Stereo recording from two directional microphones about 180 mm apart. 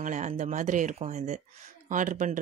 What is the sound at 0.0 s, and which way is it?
Speech, 45° right (ahead or behind).